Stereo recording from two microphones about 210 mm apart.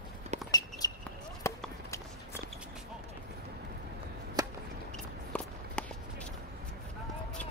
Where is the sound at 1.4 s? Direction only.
15° left (ahead or behind).